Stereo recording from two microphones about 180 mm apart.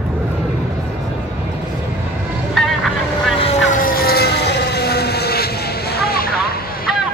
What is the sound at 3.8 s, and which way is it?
Vehicle, 55° left (ahead or behind).